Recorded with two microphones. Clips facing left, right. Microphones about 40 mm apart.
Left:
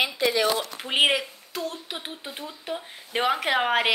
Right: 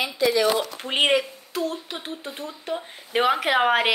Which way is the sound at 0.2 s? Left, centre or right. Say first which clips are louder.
Right 5 dB; left.